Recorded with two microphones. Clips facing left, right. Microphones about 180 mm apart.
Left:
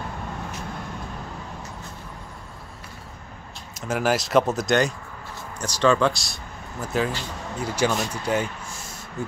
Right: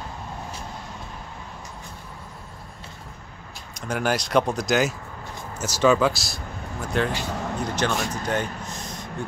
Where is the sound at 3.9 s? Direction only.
Centre (ahead or behind).